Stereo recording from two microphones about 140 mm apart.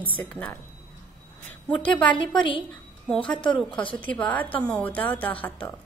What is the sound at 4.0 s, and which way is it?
A woman's voice, 10° left (ahead or behind).